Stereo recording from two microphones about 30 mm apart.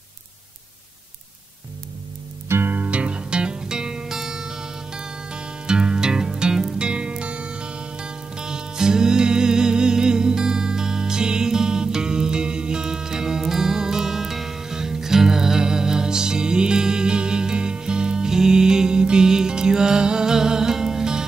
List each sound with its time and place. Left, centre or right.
2.9 s music: right